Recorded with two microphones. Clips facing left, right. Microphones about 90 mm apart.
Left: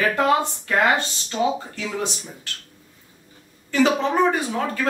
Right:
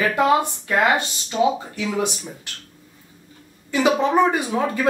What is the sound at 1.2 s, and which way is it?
Speech, 15° right (ahead or behind).